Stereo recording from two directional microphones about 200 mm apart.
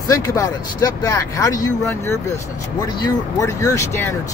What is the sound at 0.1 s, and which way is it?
Speech, 15° left (ahead or behind).